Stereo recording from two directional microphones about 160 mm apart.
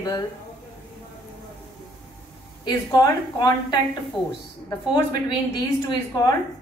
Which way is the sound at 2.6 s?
25° left (ahead or behind).